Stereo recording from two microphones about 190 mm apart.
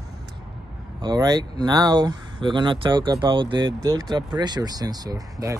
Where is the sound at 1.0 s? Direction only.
20° right (ahead or behind).